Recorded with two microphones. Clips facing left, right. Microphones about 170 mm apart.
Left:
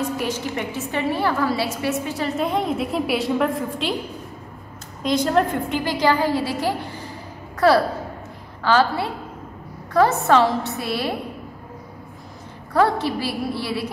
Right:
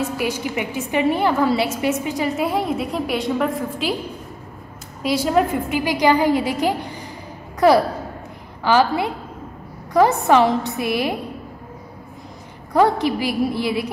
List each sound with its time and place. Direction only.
0.0 s a woman's voice: 10° right (ahead or behind)
5.0 s a woman's voice: 5° right (ahead or behind)
12.7 s a woman's voice: 15° right (ahead or behind)